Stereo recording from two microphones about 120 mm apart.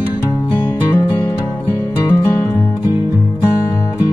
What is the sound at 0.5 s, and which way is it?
Music, 20° left (ahead or behind).